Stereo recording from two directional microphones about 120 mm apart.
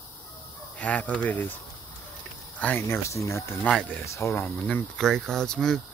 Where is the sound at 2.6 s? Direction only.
15° left (ahead or behind).